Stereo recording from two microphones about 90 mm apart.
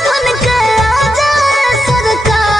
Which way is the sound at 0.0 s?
Centre (ahead or behind).